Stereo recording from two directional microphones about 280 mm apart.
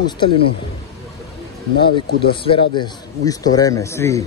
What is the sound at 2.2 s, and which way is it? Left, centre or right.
A man's voice, centre.